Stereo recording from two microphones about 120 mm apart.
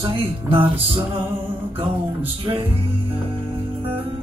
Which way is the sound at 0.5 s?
50° right (ahead or behind).